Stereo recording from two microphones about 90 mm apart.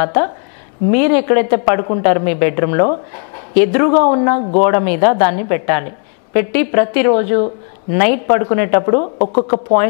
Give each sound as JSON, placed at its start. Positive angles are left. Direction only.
{"t": 0.0, "sound": "speech", "side_deg": 15}